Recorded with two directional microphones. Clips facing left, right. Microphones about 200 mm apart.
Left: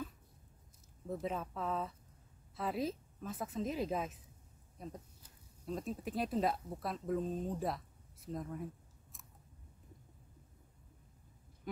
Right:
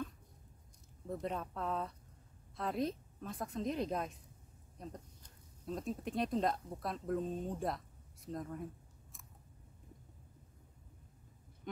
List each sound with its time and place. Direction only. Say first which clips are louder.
1.0 s a woman's voice: left 1 dB; centre (ahead or behind)
9.1 s scissors: even; centre (ahead or behind)
11.7 s a sound: left 2 dB; 5° left (ahead or behind)